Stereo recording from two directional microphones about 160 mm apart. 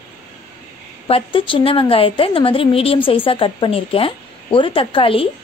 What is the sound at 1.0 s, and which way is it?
A woman's voice, 35° left (ahead or behind).